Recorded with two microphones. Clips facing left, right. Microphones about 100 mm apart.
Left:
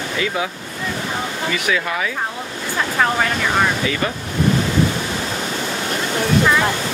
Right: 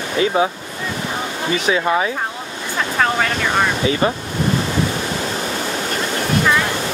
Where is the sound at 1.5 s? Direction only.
30° right (ahead or behind).